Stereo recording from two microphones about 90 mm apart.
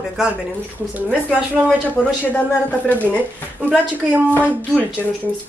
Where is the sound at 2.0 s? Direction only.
5° right (ahead or behind).